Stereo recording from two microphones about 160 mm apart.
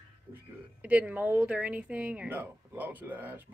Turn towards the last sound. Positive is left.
turn(degrees=-10)  # may be behind; listen again after turning